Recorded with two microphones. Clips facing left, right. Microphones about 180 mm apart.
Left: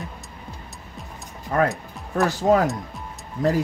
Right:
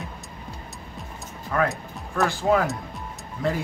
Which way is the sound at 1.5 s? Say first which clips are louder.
Left 3 dB; 40° left (ahead or behind).